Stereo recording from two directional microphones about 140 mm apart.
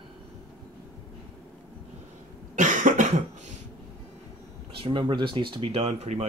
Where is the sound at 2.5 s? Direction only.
65° right (ahead or behind).